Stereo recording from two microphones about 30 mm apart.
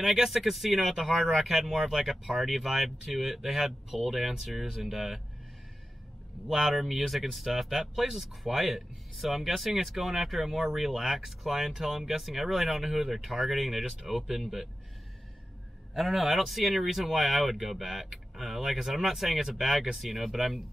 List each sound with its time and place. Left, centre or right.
0.0 s speech: centre
1.5 s speech: centre
6.5 s speech: centre
16.0 s speech: centre